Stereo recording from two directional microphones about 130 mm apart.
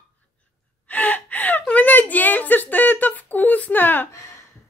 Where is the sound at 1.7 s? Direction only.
15° left (ahead or behind).